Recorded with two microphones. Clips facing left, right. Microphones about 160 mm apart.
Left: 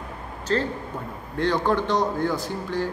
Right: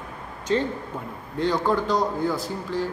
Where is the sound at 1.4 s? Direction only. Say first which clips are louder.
Even; 5° right (ahead or behind).